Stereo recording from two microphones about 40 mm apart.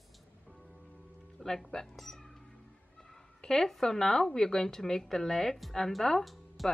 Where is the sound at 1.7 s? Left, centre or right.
Centre.